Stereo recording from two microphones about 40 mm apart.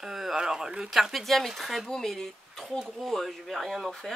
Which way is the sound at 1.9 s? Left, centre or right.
Centre.